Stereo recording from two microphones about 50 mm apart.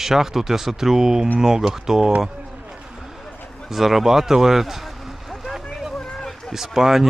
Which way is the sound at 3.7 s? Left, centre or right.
Centre.